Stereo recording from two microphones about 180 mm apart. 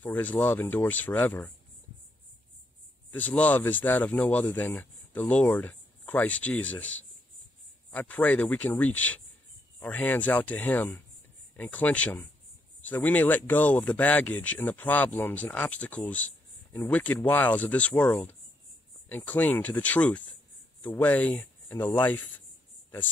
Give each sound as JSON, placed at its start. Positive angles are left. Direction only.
{"t": 0.0, "sound": "speech", "side_deg": 10}
{"t": 3.1, "sound": "speech", "side_deg": 10}